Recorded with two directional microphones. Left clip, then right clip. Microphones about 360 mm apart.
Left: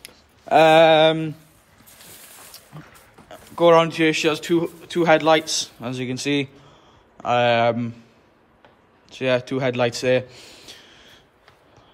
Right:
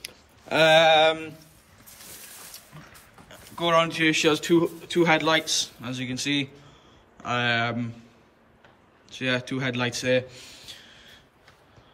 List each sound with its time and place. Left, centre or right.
0.0 s a sound: centre
3.3 s a man's voice: centre
9.1 s a man's voice: centre